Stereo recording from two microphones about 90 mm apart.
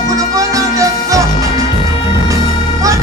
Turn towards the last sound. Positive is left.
turn(degrees=-35)  # may be behind; listen again after turning